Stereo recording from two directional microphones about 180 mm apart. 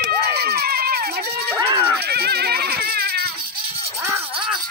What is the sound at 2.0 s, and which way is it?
Music, 60° right (ahead or behind).